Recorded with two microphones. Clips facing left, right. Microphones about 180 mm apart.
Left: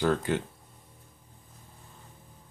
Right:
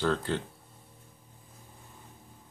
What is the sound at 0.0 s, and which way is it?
Speech, 15° left (ahead or behind).